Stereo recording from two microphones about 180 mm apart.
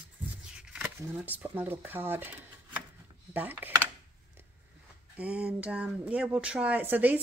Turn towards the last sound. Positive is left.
turn(degrees=-10)  # may be behind; listen again after turning